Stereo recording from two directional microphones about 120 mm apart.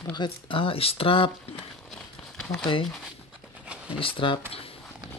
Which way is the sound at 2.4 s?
5° left (ahead or behind).